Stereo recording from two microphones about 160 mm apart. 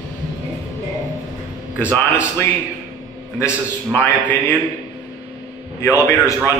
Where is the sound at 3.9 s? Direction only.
10° left (ahead or behind).